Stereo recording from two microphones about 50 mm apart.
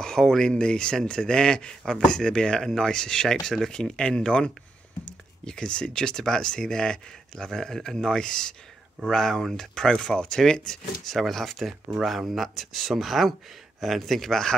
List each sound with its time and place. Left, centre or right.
0.0 s speech: centre